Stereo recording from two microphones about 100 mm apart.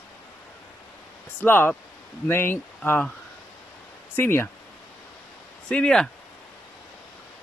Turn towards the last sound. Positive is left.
turn(degrees=5)  # may be behind; listen again after turning